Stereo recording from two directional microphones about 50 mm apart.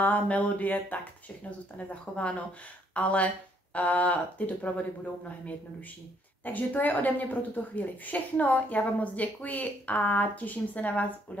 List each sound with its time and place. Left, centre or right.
0.0 s a woman's voice: left
2.1 s a woman's voice: left
6.4 s a woman's voice: left